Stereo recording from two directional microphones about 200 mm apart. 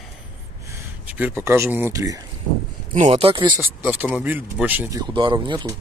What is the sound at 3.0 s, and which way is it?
Speech, 30° right (ahead or behind).